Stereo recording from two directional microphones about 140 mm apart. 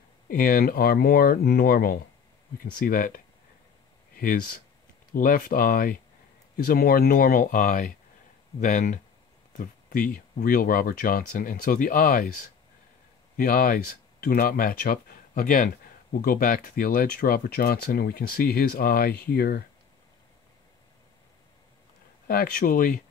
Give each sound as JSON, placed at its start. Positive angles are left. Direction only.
{"t": 0.3, "sound": "speech", "side_deg": 90}
{"t": 4.2, "sound": "speech", "side_deg": 90}
{"t": 8.5, "sound": "speech", "side_deg": 75}
{"t": 9.5, "sound": "speech", "side_deg": 85}
{"t": 13.4, "sound": "speech", "side_deg": 85}
{"t": 22.3, "sound": "speech", "side_deg": 90}